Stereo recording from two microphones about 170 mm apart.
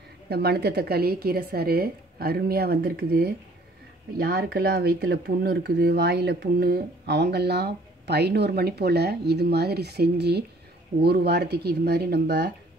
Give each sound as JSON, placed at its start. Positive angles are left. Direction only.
{"t": 0.3, "sound": "speech", "side_deg": -70}